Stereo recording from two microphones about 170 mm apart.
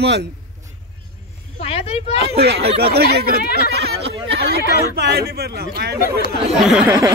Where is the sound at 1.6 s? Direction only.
35° left (ahead or behind).